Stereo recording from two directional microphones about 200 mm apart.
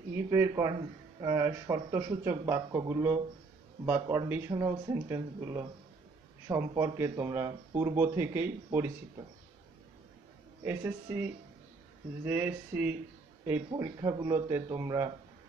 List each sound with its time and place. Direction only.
0.3 s speech: 15° right (ahead or behind)
10.6 s speech: 10° right (ahead or behind)
12.3 s speech: 10° right (ahead or behind)